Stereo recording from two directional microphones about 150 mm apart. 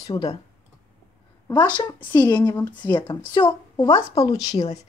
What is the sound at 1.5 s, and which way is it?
Speech, 25° left (ahead or behind).